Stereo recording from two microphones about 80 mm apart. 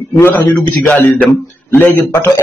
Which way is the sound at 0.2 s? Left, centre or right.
Left.